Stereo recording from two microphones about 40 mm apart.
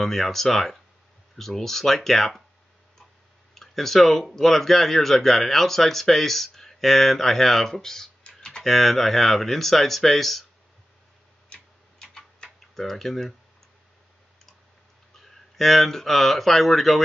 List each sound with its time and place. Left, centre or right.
0.0 s speech: centre
3.5 s speech: centre
8.2 s typing: left
8.6 s speech: centre
11.4 s tick-tock: left
12.7 s speech: centre
15.5 s speech: centre